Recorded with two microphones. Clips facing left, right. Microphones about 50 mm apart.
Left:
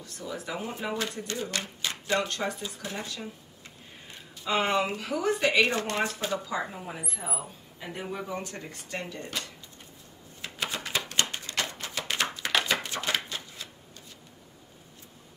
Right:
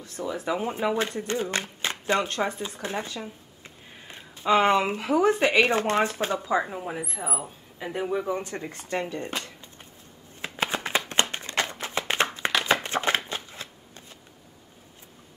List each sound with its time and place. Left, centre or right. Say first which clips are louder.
0.0 s speech: right 6 dB; right
6.3 s speech: right 5 dB; right
8.3 s speech: right 6 dB; right
10.4 s shuffling cards: right 5 dB; right
11.1 s a sound: right 4 dB; right
12.8 s shuffling cards: right 5 dB; right